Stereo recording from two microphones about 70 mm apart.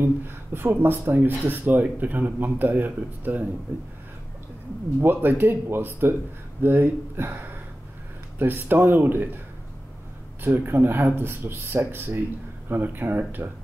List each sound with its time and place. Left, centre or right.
0.0 s speech: right
5.0 s speech: right
10.4 s speech: right